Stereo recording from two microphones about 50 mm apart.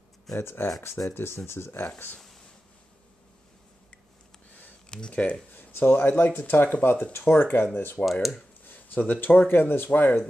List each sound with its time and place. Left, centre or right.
0.4 s speech: left
4.9 s speech: left
5.5 s speech: left
8.0 s speech: centre
8.6 s a sound: left
9.2 s speech: left